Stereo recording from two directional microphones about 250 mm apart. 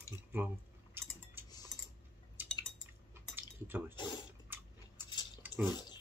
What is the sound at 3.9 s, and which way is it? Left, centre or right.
Speech, centre.